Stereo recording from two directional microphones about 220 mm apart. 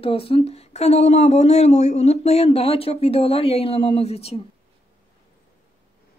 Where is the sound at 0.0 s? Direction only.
25° left (ahead or behind).